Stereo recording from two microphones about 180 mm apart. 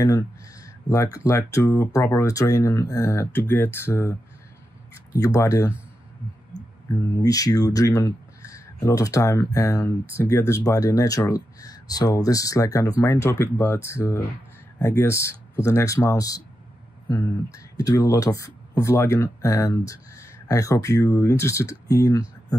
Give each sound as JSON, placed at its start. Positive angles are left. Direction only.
{"t": 0.8, "sound": "speech", "side_deg": 20}
{"t": 7.0, "sound": "speech", "side_deg": 20}